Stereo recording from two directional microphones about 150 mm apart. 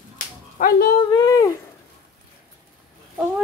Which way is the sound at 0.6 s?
75° left (ahead or behind).